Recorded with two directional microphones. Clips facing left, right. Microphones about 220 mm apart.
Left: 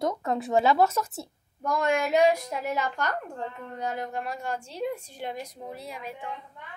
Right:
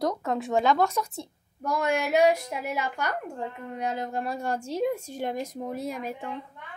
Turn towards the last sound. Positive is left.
turn(degrees=-45)  # may be behind; listen again after turning